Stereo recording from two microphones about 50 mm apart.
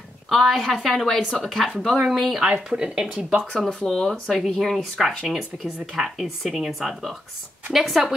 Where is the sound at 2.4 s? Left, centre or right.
Centre.